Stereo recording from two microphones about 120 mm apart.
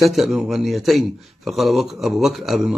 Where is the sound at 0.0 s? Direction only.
Centre (ahead or behind).